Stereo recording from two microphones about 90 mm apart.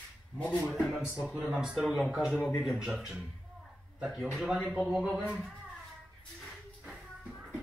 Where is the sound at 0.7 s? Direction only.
Centre (ahead or behind).